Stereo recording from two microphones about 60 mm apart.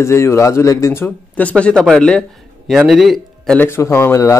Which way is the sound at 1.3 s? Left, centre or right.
Left.